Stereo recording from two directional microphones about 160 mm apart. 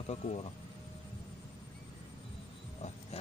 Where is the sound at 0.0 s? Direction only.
45° left (ahead or behind).